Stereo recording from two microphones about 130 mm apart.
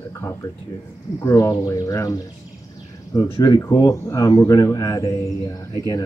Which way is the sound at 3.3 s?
35° left (ahead or behind).